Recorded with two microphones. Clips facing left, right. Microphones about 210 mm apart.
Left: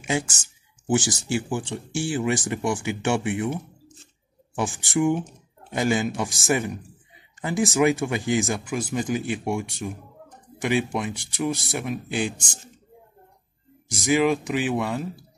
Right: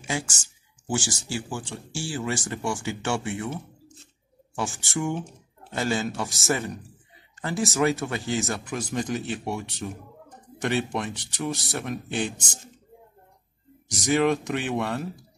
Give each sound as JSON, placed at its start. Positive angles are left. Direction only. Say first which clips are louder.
{"t": 0.0, "sound": "speech", "louder": "left 5 dB", "side_deg": 20}
{"t": 14.0, "sound": "speech", "louder": "left 1 dB", "side_deg": 5}